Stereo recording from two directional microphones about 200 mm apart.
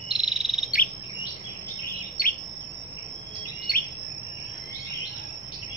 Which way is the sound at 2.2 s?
45° left (ahead or behind).